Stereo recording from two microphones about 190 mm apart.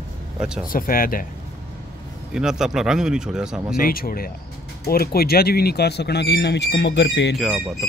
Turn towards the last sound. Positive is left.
turn(degrees=0)  # may be behind; listen again after turning